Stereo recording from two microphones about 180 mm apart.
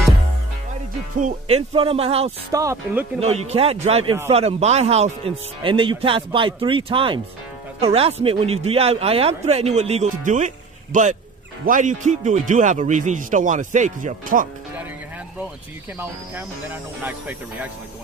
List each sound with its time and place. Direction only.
1.2 s speech: 35° right (ahead or behind)
2.5 s speech: 15° right (ahead or behind)
3.2 s speech: 35° right (ahead or behind)
16.0 s speech: 10° right (ahead or behind)